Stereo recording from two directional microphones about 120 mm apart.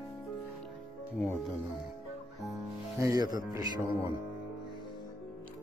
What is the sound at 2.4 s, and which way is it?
Music, centre (ahead or behind).